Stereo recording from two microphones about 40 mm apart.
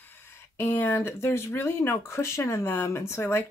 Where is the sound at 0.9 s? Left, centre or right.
Left.